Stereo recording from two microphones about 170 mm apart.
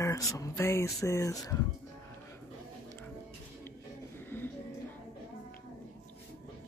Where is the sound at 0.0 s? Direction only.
20° left (ahead or behind).